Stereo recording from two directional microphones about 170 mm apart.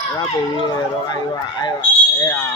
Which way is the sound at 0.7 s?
25° left (ahead or behind).